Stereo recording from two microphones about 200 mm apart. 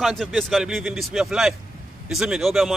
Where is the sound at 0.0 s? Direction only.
Centre (ahead or behind).